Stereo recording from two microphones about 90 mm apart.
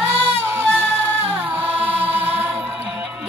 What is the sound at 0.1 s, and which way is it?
Music, 30° right (ahead or behind).